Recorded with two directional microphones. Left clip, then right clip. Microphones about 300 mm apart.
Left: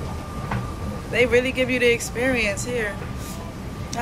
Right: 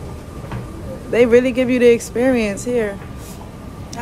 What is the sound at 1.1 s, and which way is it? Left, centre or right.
Speech, right.